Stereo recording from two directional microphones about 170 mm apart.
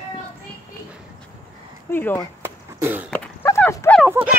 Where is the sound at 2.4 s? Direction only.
15° right (ahead or behind).